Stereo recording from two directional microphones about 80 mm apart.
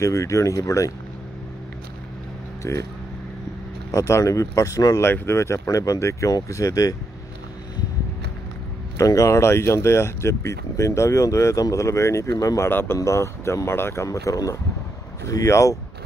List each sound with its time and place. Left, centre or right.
0.0 s speech: left
2.7 s speech: left
3.9 s speech: left
5.0 s speech: left
8.9 s speech: left
12.6 s speech: left